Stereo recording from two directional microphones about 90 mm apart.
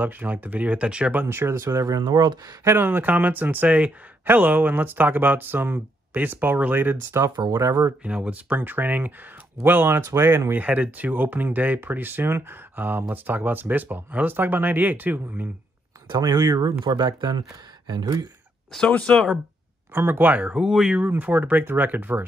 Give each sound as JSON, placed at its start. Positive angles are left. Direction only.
{"t": 0.0, "sound": "speech", "side_deg": -20}
{"t": 1.2, "sound": "speech", "side_deg": -25}
{"t": 2.6, "sound": "speech", "side_deg": -25}
{"t": 7.3, "sound": "speech", "side_deg": -55}
{"t": 8.0, "sound": "speech", "side_deg": -15}
{"t": 16.1, "sound": "speech", "side_deg": -45}
{"t": 18.9, "sound": "speech", "side_deg": 15}
{"t": 19.1, "sound": "speech", "side_deg": -5}
{"t": 19.9, "sound": "speech", "side_deg": -20}
{"t": 21.0, "sound": "speech", "side_deg": -20}